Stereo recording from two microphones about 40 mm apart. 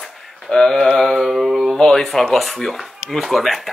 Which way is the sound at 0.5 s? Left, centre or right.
Centre.